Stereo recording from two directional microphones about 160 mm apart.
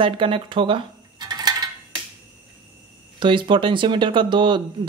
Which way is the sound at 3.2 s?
30° right (ahead or behind).